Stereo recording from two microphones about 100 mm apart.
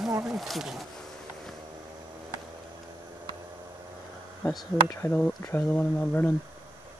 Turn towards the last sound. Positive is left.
turn(degrees=20)  # may be behind; listen again after turning